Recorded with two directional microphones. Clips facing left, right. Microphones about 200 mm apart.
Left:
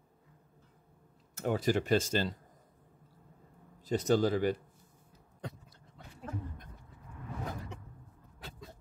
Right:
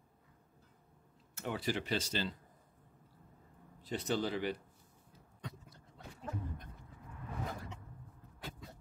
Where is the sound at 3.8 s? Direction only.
45° left (ahead or behind).